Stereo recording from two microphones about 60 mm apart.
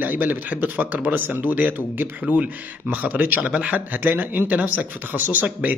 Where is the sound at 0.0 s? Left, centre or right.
Right.